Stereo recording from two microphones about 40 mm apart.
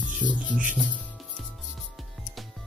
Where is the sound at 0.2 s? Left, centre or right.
Right.